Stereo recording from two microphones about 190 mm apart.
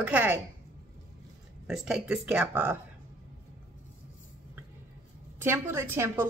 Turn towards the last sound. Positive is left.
turn(degrees=-10)  # may be behind; listen again after turning